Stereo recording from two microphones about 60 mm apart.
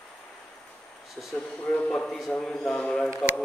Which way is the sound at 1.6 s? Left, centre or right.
Centre.